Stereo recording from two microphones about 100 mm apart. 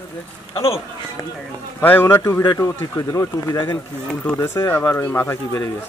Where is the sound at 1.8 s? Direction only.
20° left (ahead or behind).